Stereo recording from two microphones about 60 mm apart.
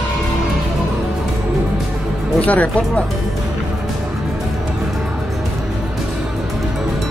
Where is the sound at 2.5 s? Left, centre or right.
Left.